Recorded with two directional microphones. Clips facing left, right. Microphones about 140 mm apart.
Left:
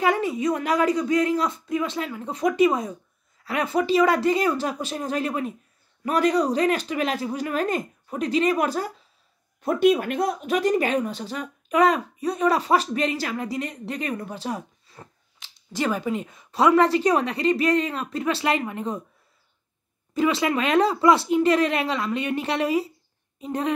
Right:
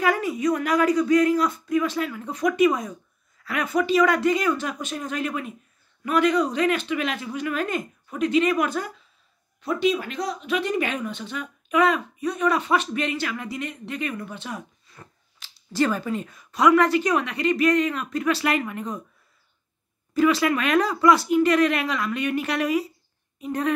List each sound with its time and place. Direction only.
0.0 s a man's voice: 25° left (ahead or behind)
9.6 s speech: 50° left (ahead or behind); by 18.9 s 25° left (ahead or behind)
20.2 s a man's voice: 25° left (ahead or behind)